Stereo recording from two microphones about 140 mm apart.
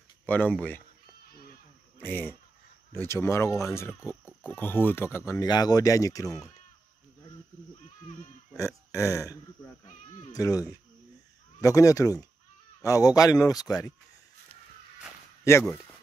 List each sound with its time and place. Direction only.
0.3 s speech: 10° left (ahead or behind)
2.0 s speech: 15° left (ahead or behind)
8.5 s speech: 20° left (ahead or behind)
11.6 s speech: 25° left (ahead or behind)
15.5 s speech: 20° left (ahead or behind)